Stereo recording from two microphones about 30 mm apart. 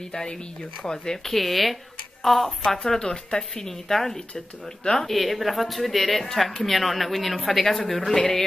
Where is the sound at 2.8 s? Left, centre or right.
Centre.